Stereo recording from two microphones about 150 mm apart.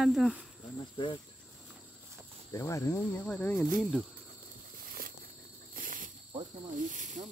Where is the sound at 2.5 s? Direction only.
20° left (ahead or behind).